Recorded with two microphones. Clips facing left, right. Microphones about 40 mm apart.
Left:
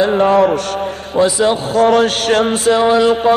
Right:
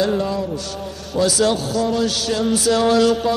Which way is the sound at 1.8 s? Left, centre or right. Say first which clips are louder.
Left 8 dB; left.